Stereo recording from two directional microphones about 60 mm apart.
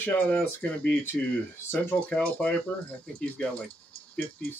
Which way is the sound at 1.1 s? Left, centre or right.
Centre.